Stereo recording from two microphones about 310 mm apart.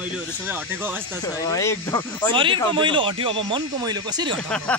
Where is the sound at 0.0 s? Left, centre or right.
Centre.